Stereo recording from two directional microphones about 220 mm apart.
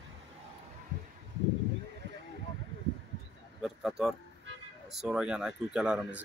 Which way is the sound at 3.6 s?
Centre (ahead or behind).